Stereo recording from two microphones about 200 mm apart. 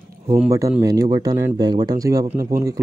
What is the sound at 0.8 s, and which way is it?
Speech, 20° right (ahead or behind).